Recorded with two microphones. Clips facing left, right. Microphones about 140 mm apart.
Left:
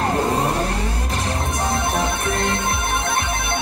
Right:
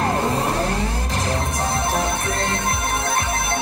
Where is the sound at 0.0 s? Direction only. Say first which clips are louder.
Left 1 dB; 30° left (ahead or behind).